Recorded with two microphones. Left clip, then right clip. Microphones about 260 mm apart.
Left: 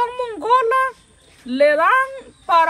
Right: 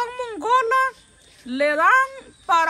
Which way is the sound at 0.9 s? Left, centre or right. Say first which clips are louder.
Left 1 dB; left.